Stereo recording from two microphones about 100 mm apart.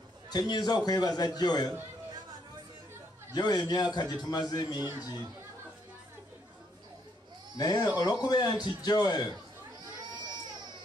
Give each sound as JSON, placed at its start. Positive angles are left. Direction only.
{"t": 0.3, "sound": "a man's voice", "side_deg": 45}
{"t": 3.3, "sound": "a man's voice", "side_deg": 45}
{"t": 7.5, "sound": "a man's voice", "side_deg": 40}
{"t": 10.2, "sound": "baby cry", "side_deg": -45}